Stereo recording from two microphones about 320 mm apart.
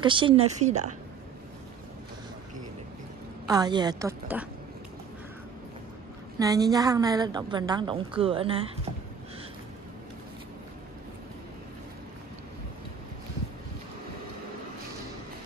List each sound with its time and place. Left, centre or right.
0.0 s a woman's voice: centre
3.4 s a woman's voice: centre
6.4 s a woman's voice: centre